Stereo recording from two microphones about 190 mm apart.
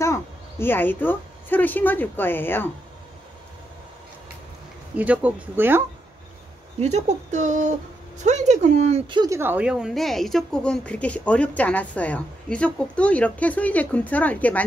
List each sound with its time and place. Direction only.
0.0 s a woman's voice: 15° left (ahead or behind)
4.9 s speech: 5° right (ahead or behind)
6.8 s a woman's voice: 35° right (ahead or behind); by 14.6 s 10° left (ahead or behind)